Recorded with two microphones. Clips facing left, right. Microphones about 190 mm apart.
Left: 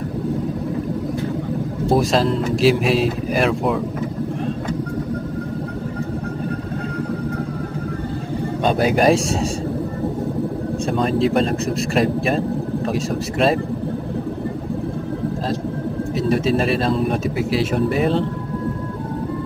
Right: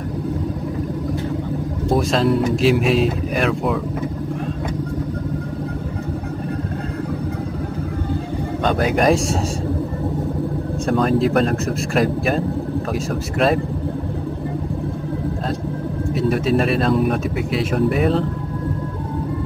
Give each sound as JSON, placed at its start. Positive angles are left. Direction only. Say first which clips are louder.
{"t": 2.0, "sound": "speech", "louder": "right 1 dB", "side_deg": 0}
{"t": 8.7, "sound": "speech", "louder": "left 1 dB", "side_deg": 30}
{"t": 10.9, "sound": "speech", "louder": "right 3 dB", "side_deg": 0}
{"t": 11.1, "sound": "speech", "louder": "even", "side_deg": 25}
{"t": 12.0, "sound": "speech", "louder": "even", "side_deg": 0}
{"t": 17.1, "sound": "speech", "louder": "left 1 dB", "side_deg": 0}